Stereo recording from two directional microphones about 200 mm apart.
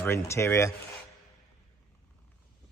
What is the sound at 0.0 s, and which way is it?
Speech, 15° left (ahead or behind).